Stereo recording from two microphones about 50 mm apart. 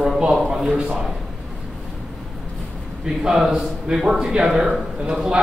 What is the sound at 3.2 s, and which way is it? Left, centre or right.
Speech, centre.